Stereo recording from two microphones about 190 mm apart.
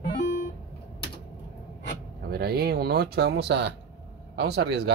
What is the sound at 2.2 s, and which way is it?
Speech, 55° right (ahead or behind).